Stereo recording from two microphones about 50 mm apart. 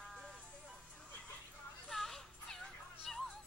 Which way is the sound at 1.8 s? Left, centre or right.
Centre.